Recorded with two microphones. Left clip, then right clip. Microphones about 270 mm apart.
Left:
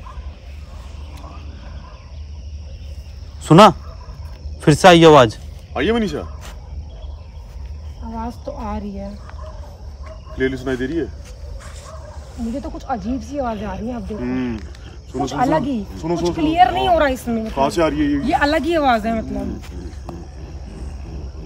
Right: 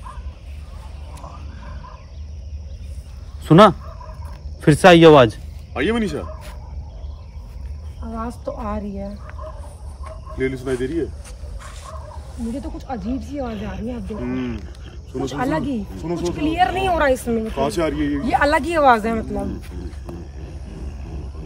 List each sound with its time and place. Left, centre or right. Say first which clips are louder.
3.4 s speech: left 2 dB; centre
8.1 s speech: even; centre
10.3 s speech: left 2 dB; left
12.5 s speech: left 7 dB; centre
14.2 s speech: left 3 dB; left
15.2 s speech: left 5 dB; centre
16.0 s speech: left 6 dB; left
16.3 s speech: left 5 dB; centre
17.6 s speech: left 6 dB; centre
18.2 s speech: right 2 dB; centre
19.6 s roaring cats: left 2 dB; centre